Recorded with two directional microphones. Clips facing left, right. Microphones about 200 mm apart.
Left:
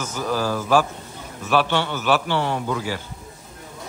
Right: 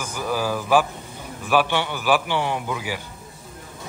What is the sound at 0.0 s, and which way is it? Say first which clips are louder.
Speech: left 1 dB; 10° right (ahead or behind).